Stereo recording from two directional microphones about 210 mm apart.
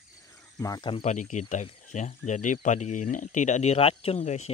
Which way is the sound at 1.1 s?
35° left (ahead or behind).